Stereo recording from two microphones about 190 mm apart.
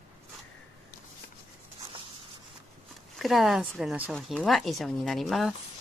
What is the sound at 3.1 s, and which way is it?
Speech, centre (ahead or behind).